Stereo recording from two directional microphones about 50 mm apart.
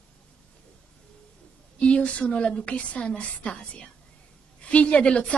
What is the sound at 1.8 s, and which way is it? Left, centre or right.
A woman's voice, left.